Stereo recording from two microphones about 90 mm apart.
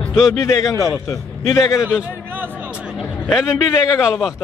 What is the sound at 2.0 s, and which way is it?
Speech, 20° right (ahead or behind).